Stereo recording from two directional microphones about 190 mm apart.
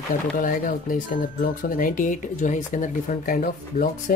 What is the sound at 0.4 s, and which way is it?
Speech, 45° left (ahead or behind).